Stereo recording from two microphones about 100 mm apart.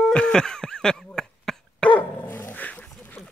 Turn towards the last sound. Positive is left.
turn(degrees=15)  # may be behind; listen again after turning